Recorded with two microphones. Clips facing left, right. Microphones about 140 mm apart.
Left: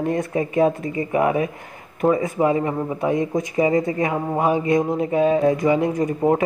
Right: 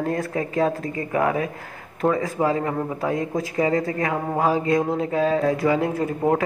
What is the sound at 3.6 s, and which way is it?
Speech, 20° left (ahead or behind).